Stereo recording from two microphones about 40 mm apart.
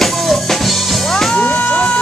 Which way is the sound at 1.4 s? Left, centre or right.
Left.